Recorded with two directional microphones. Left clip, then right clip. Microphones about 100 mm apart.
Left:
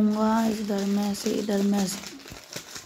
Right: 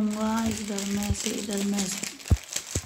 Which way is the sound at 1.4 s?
20° left (ahead or behind).